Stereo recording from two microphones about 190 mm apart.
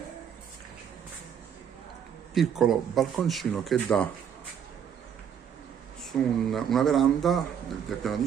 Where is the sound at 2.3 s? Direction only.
Centre (ahead or behind).